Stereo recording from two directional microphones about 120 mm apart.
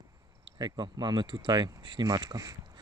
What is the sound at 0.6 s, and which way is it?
Speech, 40° right (ahead or behind).